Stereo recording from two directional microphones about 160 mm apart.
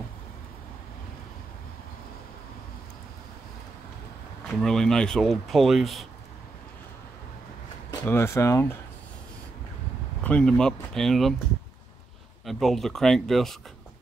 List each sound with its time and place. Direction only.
4.6 s speech: 5° left (ahead or behind)
8.0 s speech: 15° left (ahead or behind)
10.2 s speech: 5° left (ahead or behind)
12.4 s speech: centre (ahead or behind)